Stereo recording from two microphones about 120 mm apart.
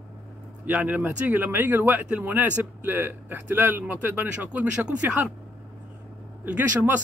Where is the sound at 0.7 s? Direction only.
15° right (ahead or behind).